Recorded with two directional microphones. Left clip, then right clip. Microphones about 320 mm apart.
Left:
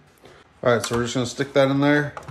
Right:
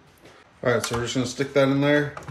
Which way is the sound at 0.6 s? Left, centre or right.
Centre.